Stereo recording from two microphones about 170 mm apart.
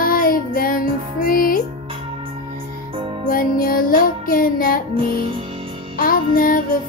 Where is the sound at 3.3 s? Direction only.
55° left (ahead or behind).